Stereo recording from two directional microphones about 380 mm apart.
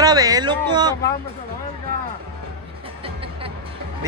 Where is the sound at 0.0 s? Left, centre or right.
Centre.